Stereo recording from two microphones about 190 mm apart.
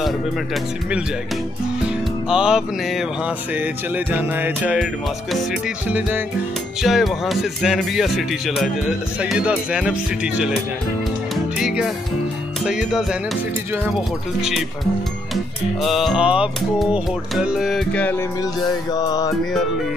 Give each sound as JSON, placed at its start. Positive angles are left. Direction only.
{"t": 1.9, "sound": "music", "side_deg": -5}
{"t": 5.9, "sound": "music", "side_deg": -10}
{"t": 6.8, "sound": "speech", "side_deg": 0}
{"t": 11.5, "sound": "music", "side_deg": -5}
{"t": 12.6, "sound": "speech", "side_deg": -5}
{"t": 15.8, "sound": "speech", "side_deg": 0}
{"t": 18.9, "sound": "music", "side_deg": 20}